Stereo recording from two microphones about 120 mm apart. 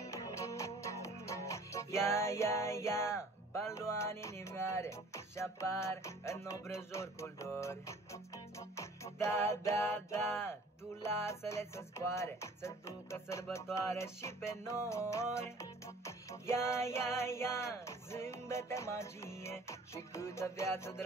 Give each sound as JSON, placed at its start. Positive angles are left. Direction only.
{"t": 0.0, "sound": "music", "side_deg": 25}